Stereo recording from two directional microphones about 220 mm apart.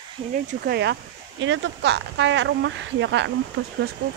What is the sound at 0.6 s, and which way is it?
Speech, 45° right (ahead or behind).